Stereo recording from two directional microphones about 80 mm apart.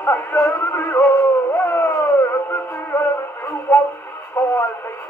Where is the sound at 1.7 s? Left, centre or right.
Left.